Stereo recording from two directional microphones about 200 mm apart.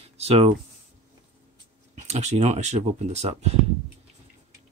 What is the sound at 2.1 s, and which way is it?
Speech, 35° right (ahead or behind).